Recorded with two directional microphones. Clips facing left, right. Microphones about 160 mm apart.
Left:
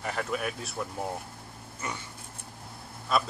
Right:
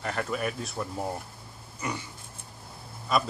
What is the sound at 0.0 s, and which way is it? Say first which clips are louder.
Speech: right 1 dB; centre (ahead or behind).